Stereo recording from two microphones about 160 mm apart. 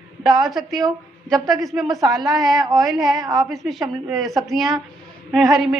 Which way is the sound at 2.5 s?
25° right (ahead or behind).